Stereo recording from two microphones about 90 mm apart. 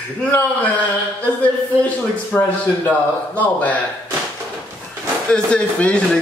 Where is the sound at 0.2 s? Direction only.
20° left (ahead or behind).